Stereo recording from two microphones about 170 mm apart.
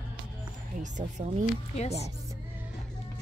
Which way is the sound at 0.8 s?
45° right (ahead or behind).